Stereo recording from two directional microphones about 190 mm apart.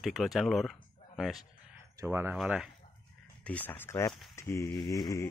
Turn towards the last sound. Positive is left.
turn(degrees=20)  # may be behind; listen again after turning